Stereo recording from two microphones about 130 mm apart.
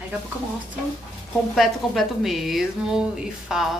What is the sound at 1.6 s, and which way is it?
Speech, centre (ahead or behind).